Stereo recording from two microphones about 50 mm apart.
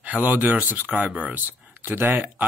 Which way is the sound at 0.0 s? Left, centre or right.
Right.